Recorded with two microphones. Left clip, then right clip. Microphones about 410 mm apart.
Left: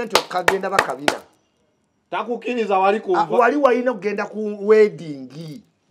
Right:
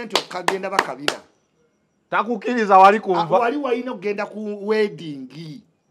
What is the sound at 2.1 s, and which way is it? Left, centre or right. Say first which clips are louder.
Speech: right 2 dB; right.